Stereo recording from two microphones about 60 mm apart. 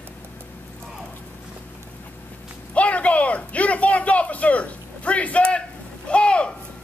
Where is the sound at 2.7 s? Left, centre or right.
Left.